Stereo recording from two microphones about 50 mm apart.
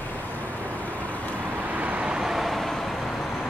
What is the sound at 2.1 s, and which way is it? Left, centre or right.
Vehicle, centre.